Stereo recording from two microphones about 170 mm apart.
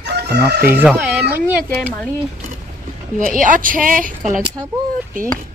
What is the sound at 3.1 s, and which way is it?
A woman's voice, 50° right (ahead or behind).